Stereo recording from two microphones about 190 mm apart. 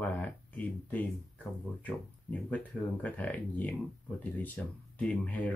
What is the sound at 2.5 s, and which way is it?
Speech, 10° left (ahead or behind).